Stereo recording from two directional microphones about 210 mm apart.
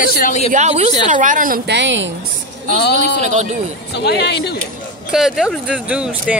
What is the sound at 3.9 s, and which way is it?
Speech, 50° left (ahead or behind).